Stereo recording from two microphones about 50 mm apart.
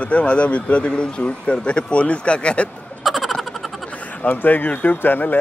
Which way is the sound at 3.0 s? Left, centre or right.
Centre.